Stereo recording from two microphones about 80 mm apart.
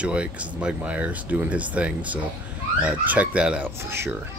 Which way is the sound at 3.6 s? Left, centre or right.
Right.